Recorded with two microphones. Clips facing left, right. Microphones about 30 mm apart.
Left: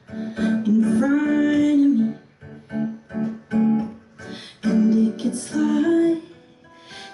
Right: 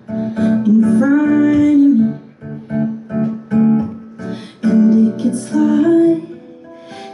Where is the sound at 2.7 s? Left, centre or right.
Right.